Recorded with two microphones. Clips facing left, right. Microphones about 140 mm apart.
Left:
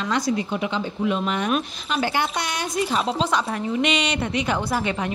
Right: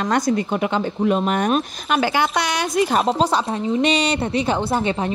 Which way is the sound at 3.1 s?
35° right (ahead or behind).